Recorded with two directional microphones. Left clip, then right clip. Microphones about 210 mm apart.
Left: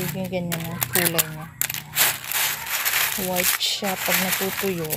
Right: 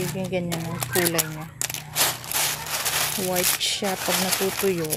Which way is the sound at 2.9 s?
30° right (ahead or behind).